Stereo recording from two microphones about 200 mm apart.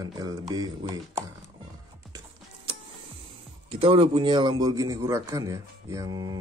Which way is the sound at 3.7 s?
25° right (ahead or behind).